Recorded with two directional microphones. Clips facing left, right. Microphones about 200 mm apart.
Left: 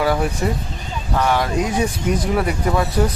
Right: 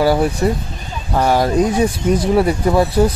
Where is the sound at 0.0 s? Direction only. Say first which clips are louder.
Right 5 dB; 35° right (ahead or behind).